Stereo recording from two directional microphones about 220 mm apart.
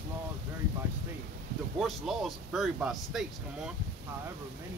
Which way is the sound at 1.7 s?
Centre (ahead or behind).